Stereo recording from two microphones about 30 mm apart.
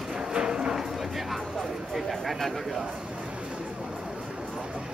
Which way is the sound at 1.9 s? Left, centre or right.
Centre.